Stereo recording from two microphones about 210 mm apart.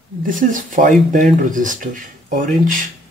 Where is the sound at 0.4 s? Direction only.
40° right (ahead or behind).